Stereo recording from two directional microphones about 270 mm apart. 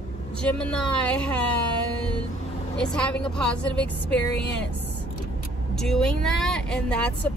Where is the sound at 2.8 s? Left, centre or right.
Centre.